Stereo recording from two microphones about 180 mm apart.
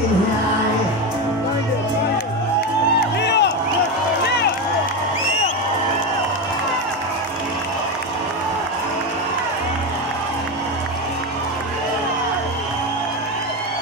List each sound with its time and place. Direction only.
3.2 s music: 70° left (ahead or behind)